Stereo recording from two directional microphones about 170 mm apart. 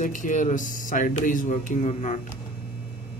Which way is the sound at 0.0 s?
50° left (ahead or behind).